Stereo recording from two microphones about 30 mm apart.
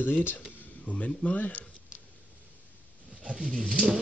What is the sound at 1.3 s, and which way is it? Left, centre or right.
Speech, left.